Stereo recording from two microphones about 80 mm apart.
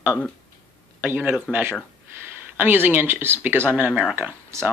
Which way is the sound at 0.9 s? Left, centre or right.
Right.